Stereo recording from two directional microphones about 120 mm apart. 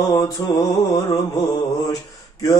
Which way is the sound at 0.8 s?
40° left (ahead or behind).